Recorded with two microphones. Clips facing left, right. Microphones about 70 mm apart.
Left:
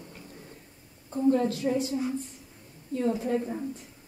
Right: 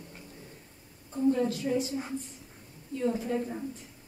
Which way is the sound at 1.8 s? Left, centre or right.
Right.